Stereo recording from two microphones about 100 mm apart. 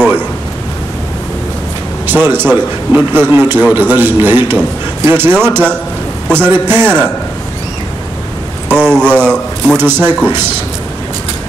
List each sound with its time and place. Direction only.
2.0 s a man's voice: 20° right (ahead or behind)
8.7 s speech: 10° left (ahead or behind)
9.8 s a man's voice: 20° right (ahead or behind)